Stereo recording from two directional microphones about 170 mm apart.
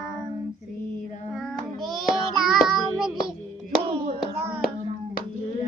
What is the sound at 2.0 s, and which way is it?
Child singing, centre (ahead or behind).